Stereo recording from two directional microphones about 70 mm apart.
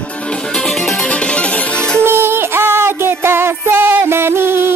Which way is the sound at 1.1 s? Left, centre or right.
Centre.